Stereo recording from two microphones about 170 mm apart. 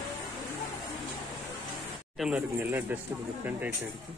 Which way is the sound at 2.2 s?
10° right (ahead or behind).